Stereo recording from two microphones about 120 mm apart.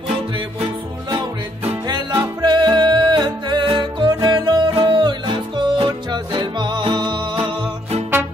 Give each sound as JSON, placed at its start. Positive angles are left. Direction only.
{"t": 1.9, "sound": "music", "side_deg": -40}